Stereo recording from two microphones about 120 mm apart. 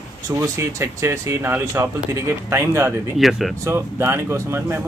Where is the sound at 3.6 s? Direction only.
20° right (ahead or behind).